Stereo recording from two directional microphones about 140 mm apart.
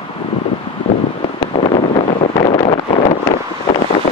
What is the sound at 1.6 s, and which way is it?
Wind noise, 50° left (ahead or behind).